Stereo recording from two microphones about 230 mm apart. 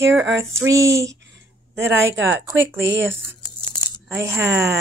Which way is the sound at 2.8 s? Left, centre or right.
Right.